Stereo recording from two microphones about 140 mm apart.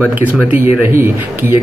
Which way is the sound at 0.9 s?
15° right (ahead or behind).